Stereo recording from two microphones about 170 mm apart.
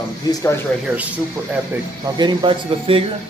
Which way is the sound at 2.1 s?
25° right (ahead or behind).